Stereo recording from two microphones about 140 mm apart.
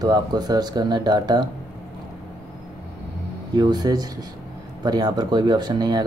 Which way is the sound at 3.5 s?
30° right (ahead or behind).